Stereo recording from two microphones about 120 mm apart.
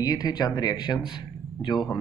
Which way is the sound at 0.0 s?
30° left (ahead or behind).